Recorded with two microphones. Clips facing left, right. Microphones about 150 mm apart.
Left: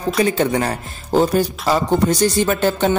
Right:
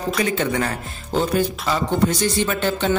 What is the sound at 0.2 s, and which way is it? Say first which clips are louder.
A man's voice: left 5 dB; 35° left (ahead or behind).